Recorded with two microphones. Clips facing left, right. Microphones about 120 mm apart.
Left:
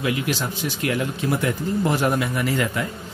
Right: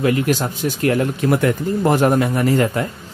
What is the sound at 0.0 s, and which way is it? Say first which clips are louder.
Speech: right 7 dB; 45° right (ahead or behind).